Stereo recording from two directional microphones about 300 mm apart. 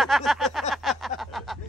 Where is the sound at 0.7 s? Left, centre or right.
Centre.